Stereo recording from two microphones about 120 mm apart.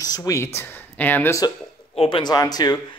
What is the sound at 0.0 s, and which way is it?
Speech, 30° left (ahead or behind).